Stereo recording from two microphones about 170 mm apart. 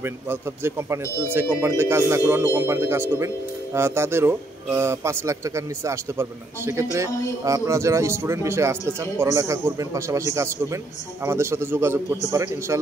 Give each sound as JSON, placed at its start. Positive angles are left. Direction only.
{"t": 0.0, "sound": "speech", "side_deg": -15}